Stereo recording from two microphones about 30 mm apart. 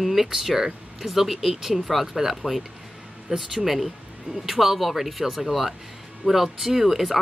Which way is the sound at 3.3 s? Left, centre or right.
Right.